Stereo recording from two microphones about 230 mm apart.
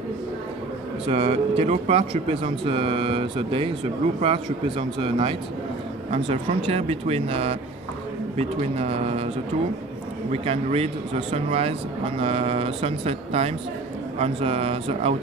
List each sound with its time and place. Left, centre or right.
1.0 s speech: right
10.3 s speech: right